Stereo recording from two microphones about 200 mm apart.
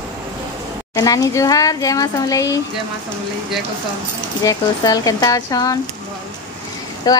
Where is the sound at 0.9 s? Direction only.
20° left (ahead or behind).